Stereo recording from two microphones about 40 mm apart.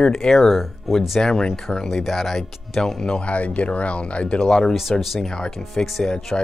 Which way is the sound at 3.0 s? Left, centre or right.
Left.